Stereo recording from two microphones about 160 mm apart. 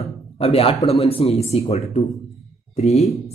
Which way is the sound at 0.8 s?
40° left (ahead or behind).